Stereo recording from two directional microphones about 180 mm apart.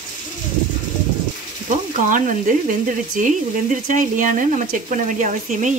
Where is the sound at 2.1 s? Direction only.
45° right (ahead or behind).